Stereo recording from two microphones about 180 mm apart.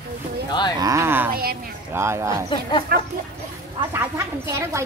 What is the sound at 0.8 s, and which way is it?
Speech, 15° right (ahead or behind).